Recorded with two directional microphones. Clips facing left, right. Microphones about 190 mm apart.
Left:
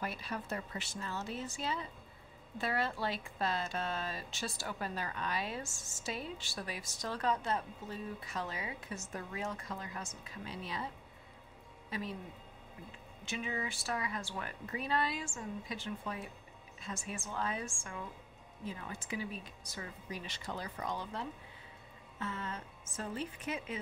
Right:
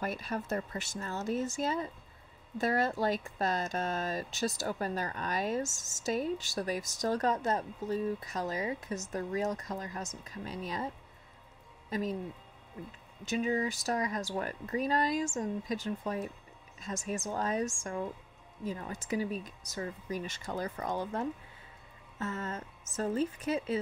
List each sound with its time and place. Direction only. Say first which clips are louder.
0.0 s speech: right 5 dB; 45° right (ahead or behind)
11.9 s speech: right 7 dB; 40° right (ahead or behind)
13.2 s speech: right 9 dB; 40° right (ahead or behind)